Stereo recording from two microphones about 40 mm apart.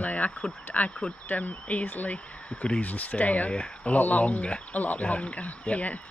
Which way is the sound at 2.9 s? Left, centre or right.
Left.